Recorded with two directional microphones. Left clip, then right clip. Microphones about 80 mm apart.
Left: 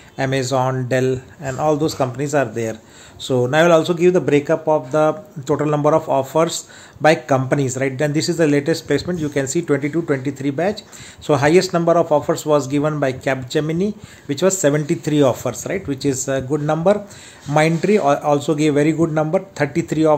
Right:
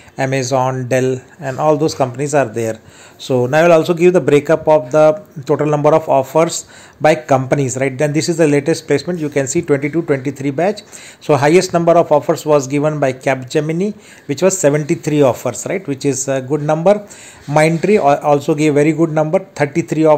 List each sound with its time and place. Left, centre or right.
0.2 s speech: right
4.6 s a man's voice: right